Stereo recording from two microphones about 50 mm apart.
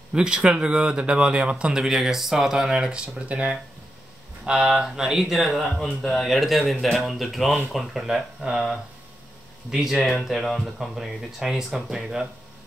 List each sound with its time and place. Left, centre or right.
0.1 s speech: centre
4.5 s speech: centre